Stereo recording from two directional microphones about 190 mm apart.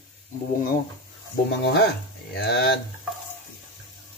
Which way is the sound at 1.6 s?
60° left (ahead or behind).